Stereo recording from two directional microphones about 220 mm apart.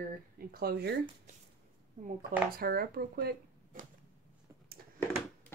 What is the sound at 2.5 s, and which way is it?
Speech, 45° right (ahead or behind).